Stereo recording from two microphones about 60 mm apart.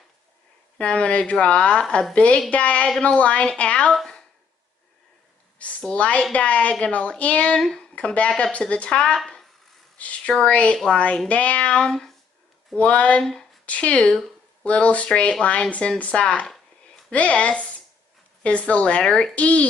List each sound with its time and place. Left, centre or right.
0.7 s speech: centre
5.6 s speech: centre
9.9 s speech: left